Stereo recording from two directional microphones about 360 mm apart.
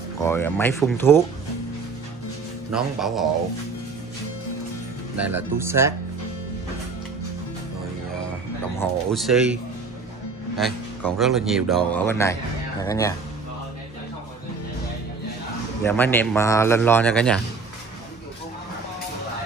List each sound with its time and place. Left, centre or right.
0.2 s speech: centre
2.7 s speech: centre
5.1 s speech: centre
8.7 s speech: centre
10.6 s speech: centre
15.8 s speech: centre